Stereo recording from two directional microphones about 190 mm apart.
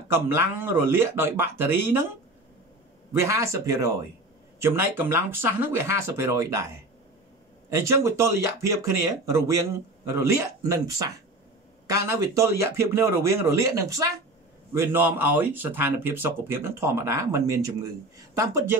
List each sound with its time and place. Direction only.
0.1 s speech: 10° right (ahead or behind)
7.7 s speech: 15° right (ahead or behind)
10.0 s speech: 15° right (ahead or behind)